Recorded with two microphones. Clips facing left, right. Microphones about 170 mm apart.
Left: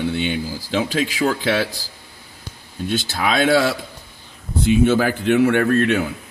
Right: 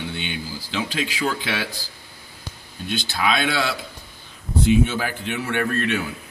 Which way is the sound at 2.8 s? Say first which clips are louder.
Left 2 dB; 40° left (ahead or behind).